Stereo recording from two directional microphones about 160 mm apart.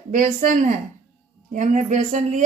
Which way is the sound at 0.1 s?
55° right (ahead or behind).